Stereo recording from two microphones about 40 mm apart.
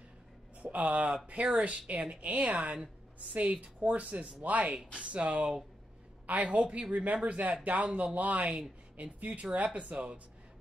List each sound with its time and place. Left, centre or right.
0.6 s speech: right